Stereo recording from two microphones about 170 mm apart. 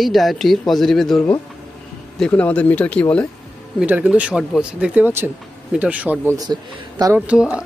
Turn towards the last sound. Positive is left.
turn(degrees=-5)  # may be behind; listen again after turning